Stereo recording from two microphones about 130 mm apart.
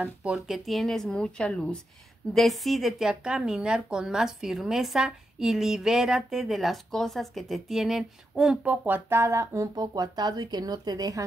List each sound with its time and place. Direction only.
0.0 s speech: 5° right (ahead or behind)
8.8 s speech: 15° right (ahead or behind)